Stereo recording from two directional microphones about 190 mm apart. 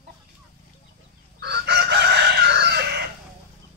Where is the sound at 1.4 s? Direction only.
60° right (ahead or behind).